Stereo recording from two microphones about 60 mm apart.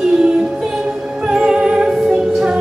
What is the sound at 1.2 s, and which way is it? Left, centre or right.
Music, centre.